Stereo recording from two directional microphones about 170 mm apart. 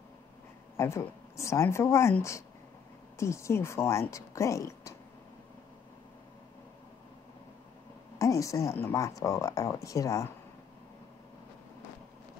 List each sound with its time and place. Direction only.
0.7 s a woman's voice: 15° left (ahead or behind)
8.2 s a woman's voice: 20° left (ahead or behind)